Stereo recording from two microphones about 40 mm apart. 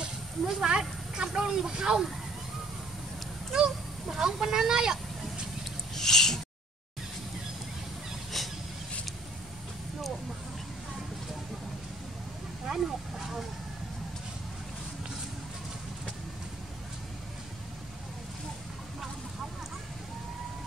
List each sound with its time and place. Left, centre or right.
0.6 s speech: centre
3.5 s speech: centre
5.9 s speech: centre
8.3 s vehicle: centre
12.6 s a sound: centre